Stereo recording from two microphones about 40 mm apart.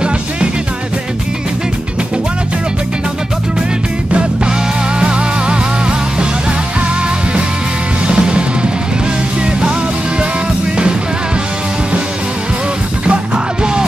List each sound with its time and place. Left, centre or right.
4.1 s music: right
8.1 s music: right